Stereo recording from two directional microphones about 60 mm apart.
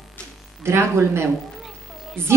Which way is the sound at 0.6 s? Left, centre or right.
Right.